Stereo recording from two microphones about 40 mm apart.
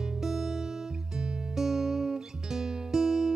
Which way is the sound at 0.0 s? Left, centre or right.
Centre.